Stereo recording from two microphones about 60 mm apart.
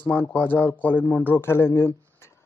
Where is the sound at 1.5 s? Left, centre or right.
Left.